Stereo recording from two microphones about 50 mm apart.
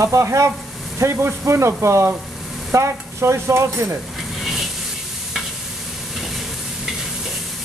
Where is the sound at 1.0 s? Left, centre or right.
Right.